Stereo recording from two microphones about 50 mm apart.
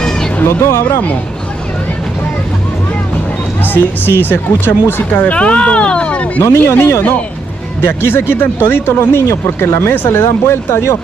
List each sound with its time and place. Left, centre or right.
0.6 s speech: left
3.6 s speech: left
5.1 s speech: left
6.4 s speech: left
9.3 s speech: left